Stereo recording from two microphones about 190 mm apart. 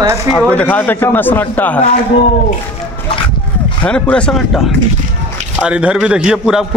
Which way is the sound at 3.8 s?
5° left (ahead or behind).